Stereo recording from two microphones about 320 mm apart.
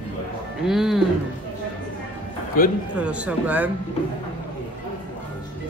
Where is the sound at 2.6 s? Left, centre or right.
Left.